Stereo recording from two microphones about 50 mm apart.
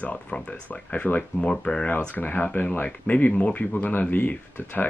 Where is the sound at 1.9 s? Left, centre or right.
Left.